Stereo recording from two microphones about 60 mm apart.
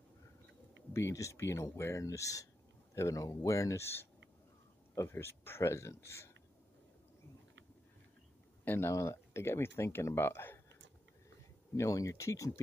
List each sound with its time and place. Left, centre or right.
1.1 s speech: left
1.4 s speech: left
3.8 s speech: left
8.6 s speech: left
8.9 s speech: left
11.7 s speech: left